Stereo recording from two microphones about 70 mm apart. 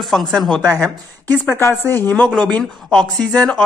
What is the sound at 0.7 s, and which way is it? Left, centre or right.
Speech, left.